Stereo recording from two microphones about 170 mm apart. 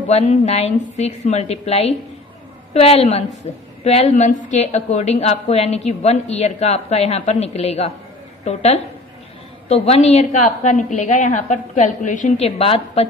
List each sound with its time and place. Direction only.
0.1 s a woman's voice: 45° left (ahead or behind)